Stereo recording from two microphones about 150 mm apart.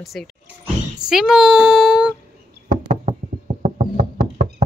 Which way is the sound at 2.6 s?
50° right (ahead or behind).